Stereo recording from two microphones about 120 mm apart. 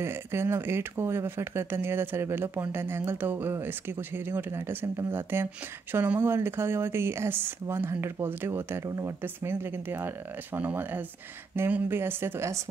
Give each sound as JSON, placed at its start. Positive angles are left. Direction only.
{"t": 0.0, "sound": "speech", "side_deg": -20}